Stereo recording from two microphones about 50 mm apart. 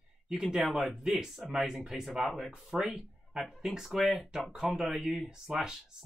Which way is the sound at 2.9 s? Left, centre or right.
Centre.